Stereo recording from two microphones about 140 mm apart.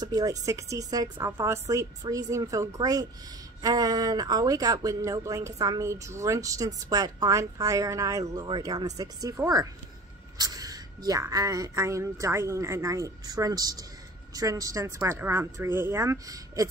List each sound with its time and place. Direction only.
0.0 s speech: 30° right (ahead or behind)